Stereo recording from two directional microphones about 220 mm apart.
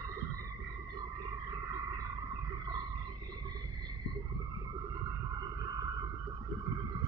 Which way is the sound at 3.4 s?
20° right (ahead or behind).